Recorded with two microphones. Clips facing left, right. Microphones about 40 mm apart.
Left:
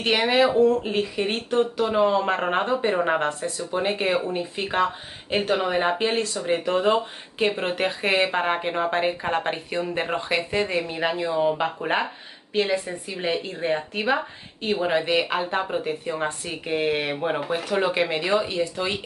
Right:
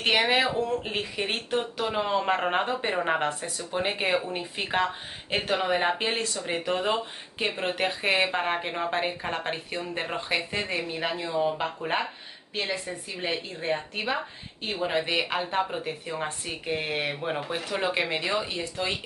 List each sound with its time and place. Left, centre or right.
0.0 s speech: centre
11.0 s speech: centre